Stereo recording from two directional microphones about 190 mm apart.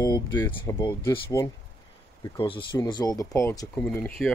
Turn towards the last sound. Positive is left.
turn(degrees=10)  # may be behind; listen again after turning